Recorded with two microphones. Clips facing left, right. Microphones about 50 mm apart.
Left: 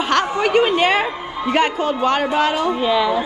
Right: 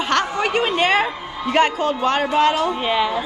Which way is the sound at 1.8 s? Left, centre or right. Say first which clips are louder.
Left 1 dB; left.